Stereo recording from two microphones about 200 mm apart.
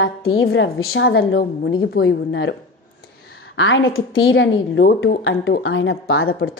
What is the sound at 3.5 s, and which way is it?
Speech, 70° left (ahead or behind).